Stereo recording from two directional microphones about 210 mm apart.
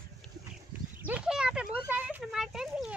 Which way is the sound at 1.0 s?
5° right (ahead or behind).